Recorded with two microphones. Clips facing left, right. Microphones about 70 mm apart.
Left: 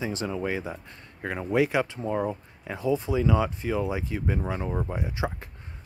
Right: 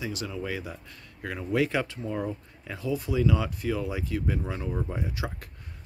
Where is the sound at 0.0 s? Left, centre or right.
Left.